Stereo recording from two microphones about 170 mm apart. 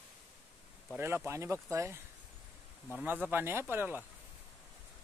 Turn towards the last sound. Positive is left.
turn(degrees=-10)  # may be behind; listen again after turning